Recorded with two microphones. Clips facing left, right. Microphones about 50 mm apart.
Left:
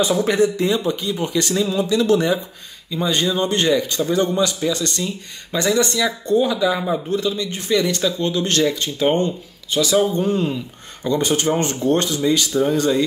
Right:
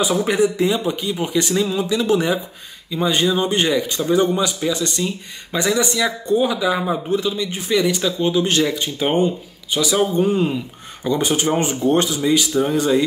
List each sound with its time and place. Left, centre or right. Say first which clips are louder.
0.0 s a man's voice: even; centre